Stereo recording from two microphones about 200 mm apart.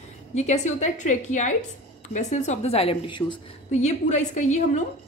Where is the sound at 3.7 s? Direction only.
35° left (ahead or behind).